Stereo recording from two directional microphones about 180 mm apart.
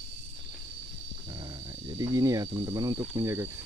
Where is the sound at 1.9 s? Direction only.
20° right (ahead or behind).